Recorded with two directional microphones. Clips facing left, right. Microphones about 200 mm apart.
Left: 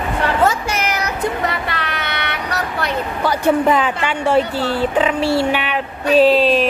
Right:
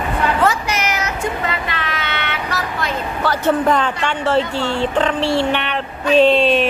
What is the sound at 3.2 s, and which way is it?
Speech, 10° left (ahead or behind).